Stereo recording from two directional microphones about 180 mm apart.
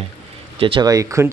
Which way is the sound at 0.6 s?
25° right (ahead or behind).